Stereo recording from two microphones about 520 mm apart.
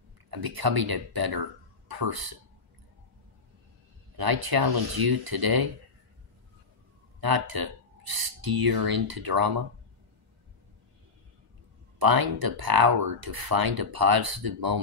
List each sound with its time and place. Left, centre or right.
0.3 s speech: right
4.2 s speech: right
7.2 s speech: right
12.0 s speech: right